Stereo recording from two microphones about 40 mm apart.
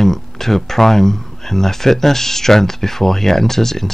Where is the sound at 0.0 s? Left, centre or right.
Centre.